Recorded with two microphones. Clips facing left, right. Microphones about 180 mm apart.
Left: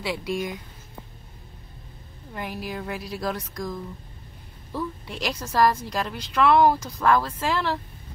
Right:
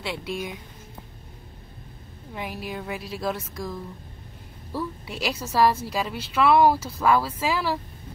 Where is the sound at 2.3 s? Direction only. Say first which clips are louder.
Left 1 dB; centre (ahead or behind).